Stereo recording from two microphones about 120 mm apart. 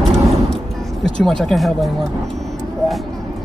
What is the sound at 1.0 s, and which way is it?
Speech, 5° left (ahead or behind).